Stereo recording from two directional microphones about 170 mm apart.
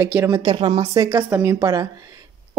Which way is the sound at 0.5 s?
30° right (ahead or behind).